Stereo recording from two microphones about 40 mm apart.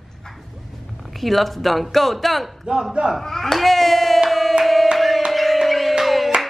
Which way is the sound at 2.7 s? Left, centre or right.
Right.